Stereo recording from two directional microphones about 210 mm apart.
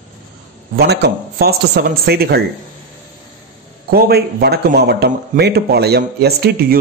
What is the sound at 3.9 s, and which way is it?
A man's voice, 50° right (ahead or behind).